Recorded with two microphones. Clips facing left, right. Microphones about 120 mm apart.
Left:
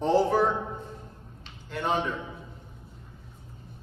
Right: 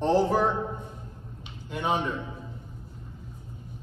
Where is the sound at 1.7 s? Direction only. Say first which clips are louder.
Even; 5° right (ahead or behind).